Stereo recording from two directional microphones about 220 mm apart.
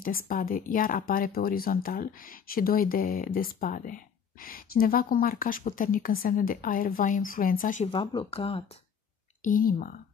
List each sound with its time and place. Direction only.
0.0 s speech: 40° left (ahead or behind)
7.9 s speech: 20° left (ahead or behind)
9.4 s speech: 40° left (ahead or behind)